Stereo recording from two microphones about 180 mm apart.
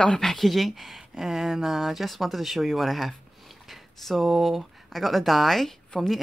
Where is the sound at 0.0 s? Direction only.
5° left (ahead or behind).